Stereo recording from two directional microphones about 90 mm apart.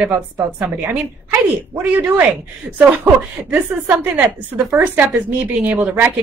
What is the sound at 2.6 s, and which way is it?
A woman's voice, 10° right (ahead or behind).